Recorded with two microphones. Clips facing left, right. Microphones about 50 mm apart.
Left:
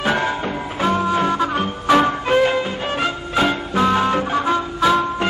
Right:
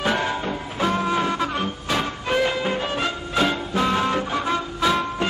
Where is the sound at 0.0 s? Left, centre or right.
Left.